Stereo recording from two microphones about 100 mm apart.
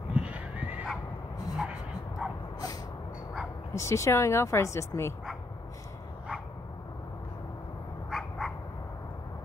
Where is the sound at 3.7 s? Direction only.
30° left (ahead or behind).